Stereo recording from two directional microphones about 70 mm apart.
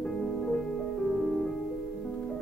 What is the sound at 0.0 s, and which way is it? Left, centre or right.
Music, centre.